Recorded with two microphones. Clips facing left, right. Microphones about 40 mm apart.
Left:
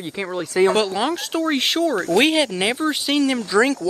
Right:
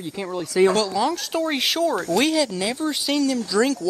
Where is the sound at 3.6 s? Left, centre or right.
Left.